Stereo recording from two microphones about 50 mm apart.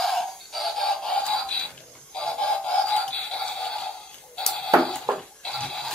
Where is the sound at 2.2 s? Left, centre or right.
Centre.